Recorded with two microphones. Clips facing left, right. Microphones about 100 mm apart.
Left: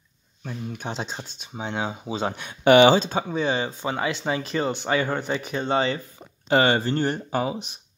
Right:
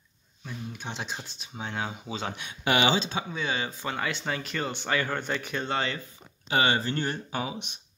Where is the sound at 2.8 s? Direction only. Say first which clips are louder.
Left 9 dB; 45° left (ahead or behind).